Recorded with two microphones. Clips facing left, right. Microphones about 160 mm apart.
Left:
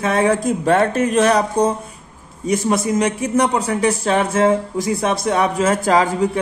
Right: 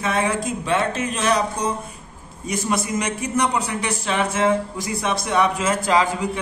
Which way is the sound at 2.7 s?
35° left (ahead or behind).